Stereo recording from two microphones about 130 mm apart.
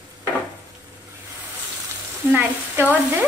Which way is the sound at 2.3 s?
15° right (ahead or behind).